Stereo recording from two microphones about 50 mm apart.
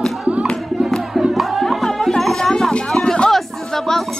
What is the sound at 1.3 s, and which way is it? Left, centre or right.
Music, centre.